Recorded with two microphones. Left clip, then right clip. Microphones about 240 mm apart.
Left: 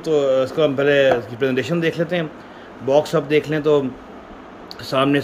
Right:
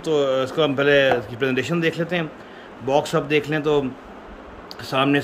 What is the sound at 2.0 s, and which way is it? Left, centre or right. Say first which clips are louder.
A man's voice: left 3 dB; centre.